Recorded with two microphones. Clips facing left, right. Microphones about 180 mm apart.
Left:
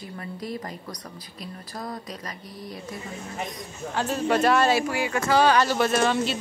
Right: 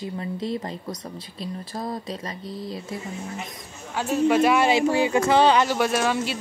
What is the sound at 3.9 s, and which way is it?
Speech, 10° right (ahead or behind).